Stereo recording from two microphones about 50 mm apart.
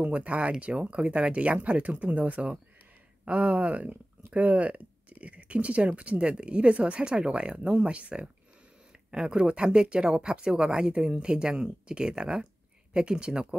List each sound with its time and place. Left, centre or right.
0.0 s speech: right